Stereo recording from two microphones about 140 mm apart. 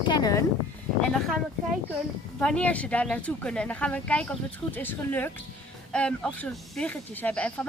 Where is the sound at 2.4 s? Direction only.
10° left (ahead or behind).